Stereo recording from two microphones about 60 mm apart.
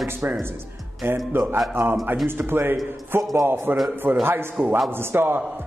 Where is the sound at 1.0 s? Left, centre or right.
Right.